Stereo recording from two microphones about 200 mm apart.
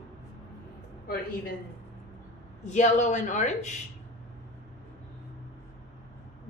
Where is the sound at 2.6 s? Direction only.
35° left (ahead or behind).